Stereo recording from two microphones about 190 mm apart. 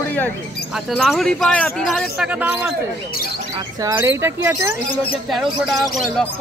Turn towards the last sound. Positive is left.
turn(degrees=0)  # may be behind; listen again after turning